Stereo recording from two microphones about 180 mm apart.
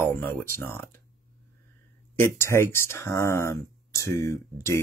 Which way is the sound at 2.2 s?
15° left (ahead or behind).